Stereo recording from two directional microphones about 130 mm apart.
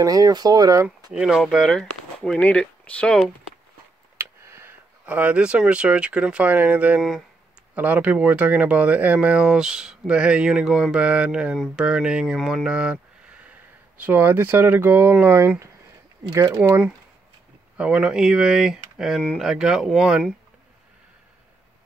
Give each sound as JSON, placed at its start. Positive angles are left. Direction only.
{"t": 0.0, "sound": "speech", "side_deg": -30}
{"t": 1.1, "sound": "speech", "side_deg": -5}
{"t": 4.2, "sound": "a sound", "side_deg": -20}
{"t": 5.0, "sound": "speech", "side_deg": -10}
{"t": 7.0, "sound": "speech", "side_deg": 0}
{"t": 7.7, "sound": "speech", "side_deg": -10}
{"t": 11.5, "sound": "speech", "side_deg": 5}
{"t": 11.8, "sound": "speech", "side_deg": -5}
{"t": 12.4, "sound": "speech", "side_deg": 5}
{"t": 12.6, "sound": "speech", "side_deg": -5}
{"t": 17.7, "sound": "speech", "side_deg": -5}